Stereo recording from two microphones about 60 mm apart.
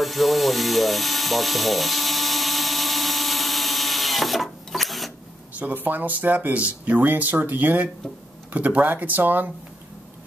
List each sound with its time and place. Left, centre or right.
0.0 s ratchet: centre
5.6 s speech: right